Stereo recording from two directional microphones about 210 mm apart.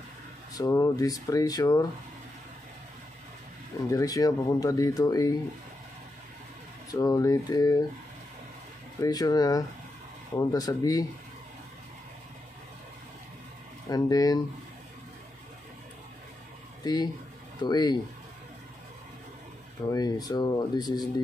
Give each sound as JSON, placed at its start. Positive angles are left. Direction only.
{"t": 0.6, "sound": "speech", "side_deg": 15}
{"t": 3.9, "sound": "speech", "side_deg": 15}
{"t": 6.9, "sound": "speech", "side_deg": 15}
{"t": 9.0, "sound": "speech", "side_deg": 15}
{"t": 13.8, "sound": "speech", "side_deg": 15}
{"t": 16.8, "sound": "speech", "side_deg": 20}
{"t": 19.9, "sound": "speech", "side_deg": 20}